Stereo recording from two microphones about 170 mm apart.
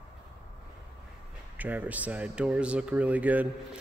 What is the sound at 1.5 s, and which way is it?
A man's voice, 10° right (ahead or behind).